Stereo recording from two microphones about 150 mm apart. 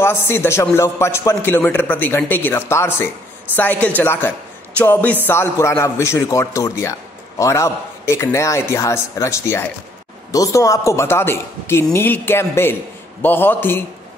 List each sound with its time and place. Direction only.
0.0 s a man's voice: 15° left (ahead or behind)